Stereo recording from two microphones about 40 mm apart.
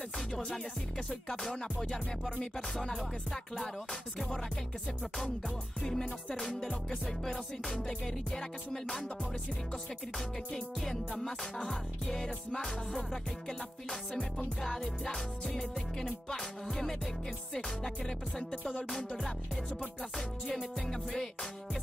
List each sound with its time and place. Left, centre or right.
0.3 s music: left
1.3 s music: centre
5.8 s music: centre
10.1 s music: centre
18.0 s music: centre